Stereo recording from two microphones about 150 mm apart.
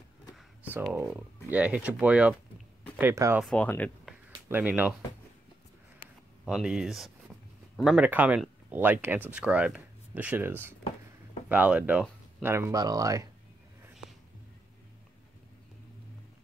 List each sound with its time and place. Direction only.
0.9 s speech: 10° right (ahead or behind)
3.4 s speech: 10° left (ahead or behind)
4.5 s speech: 10° right (ahead or behind)
6.4 s speech: 5° right (ahead or behind)
12.7 s speech: 25° right (ahead or behind)